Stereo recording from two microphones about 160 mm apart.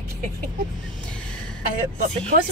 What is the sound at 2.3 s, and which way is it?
Speech, 65° right (ahead or behind).